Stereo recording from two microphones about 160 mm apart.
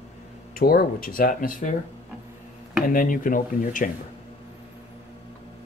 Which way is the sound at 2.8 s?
60° left (ahead or behind).